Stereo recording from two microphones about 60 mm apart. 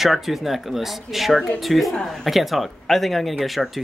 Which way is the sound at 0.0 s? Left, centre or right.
Centre.